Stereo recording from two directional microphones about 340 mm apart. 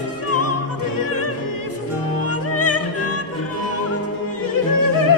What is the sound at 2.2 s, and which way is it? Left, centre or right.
Music, left.